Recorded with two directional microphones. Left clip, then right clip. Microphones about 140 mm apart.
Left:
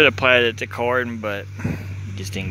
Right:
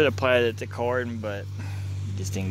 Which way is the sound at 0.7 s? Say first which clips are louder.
Left 6 dB; 25° left (ahead or behind).